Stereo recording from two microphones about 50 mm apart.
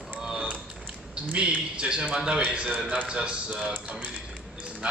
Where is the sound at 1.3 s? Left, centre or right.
Right.